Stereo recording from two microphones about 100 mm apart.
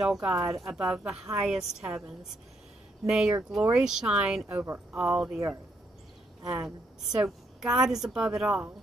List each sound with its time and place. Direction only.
0.0 s a woman's voice: 10° right (ahead or behind)
3.1 s a woman's voice: 10° right (ahead or behind)
4.5 s a woman's voice: 20° right (ahead or behind)
6.4 s a woman's voice: 10° right (ahead or behind)